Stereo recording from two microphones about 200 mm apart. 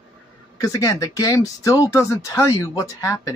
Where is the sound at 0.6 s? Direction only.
15° left (ahead or behind).